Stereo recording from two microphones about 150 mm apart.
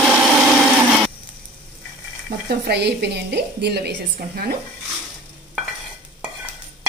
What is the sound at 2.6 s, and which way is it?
A woman's voice, 90° right.